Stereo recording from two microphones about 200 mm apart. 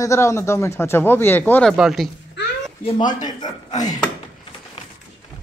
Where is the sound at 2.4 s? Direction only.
60° left (ahead or behind).